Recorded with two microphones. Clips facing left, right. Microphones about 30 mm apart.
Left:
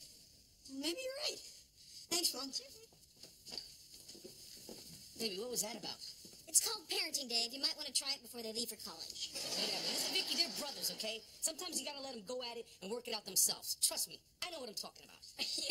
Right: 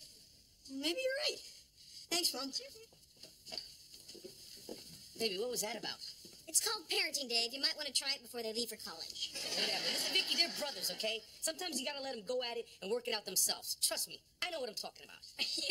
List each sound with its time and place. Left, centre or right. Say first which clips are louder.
0.7 s a woman's voice: right 5 dB; right